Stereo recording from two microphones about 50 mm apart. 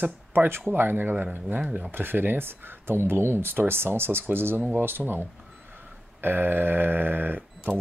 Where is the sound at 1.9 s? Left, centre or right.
Right.